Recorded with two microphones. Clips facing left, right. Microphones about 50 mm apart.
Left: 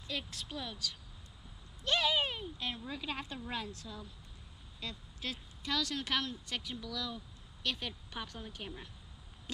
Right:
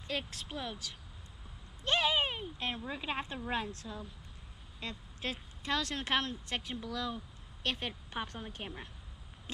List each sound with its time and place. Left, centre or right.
0.0 s a woman's voice: right